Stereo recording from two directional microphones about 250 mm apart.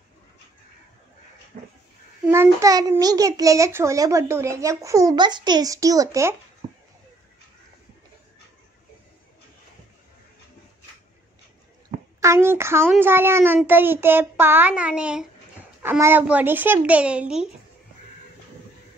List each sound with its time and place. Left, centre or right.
1.5 s a sound: right
2.2 s a child's voice: centre
12.2 s a child's voice: centre